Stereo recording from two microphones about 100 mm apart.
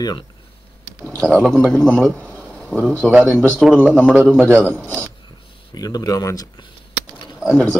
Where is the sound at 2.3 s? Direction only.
10° left (ahead or behind).